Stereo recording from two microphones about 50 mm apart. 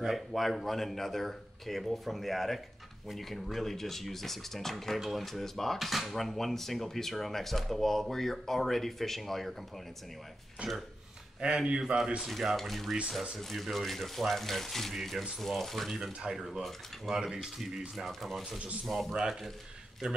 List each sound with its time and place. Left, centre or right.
0.0 s speech: centre
10.6 s speech: right
12.2 s speech: centre
16.0 s speech: centre